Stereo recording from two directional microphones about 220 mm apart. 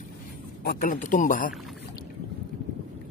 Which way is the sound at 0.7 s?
40° left (ahead or behind).